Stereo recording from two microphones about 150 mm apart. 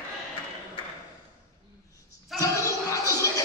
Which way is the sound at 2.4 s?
20° left (ahead or behind).